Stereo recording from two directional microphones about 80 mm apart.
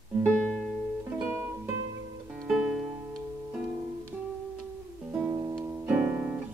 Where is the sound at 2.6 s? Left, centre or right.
Centre.